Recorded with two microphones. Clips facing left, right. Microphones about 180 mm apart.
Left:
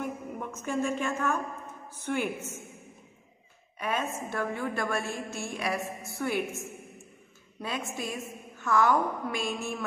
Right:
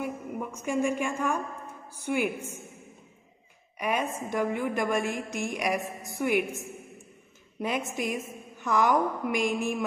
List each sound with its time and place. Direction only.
0.0 s a woman's voice: 10° right (ahead or behind)
3.7 s a woman's voice: 15° right (ahead or behind)
7.6 s a woman's voice: 15° right (ahead or behind)